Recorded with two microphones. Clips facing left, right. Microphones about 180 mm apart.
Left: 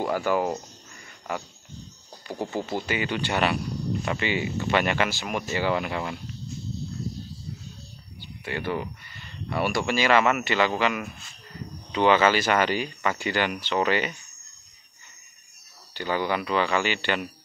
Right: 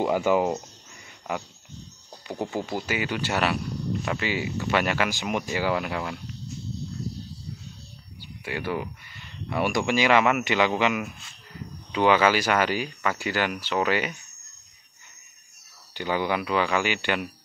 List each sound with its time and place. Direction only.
0.0 s speech: 15° right (ahead or behind)
2.5 s speech: 10° right (ahead or behind)
5.1 s speech: 15° right (ahead or behind); by 6.1 s centre (ahead or behind)
8.2 s speech: 10° right (ahead or behind)
15.9 s speech: 15° right (ahead or behind)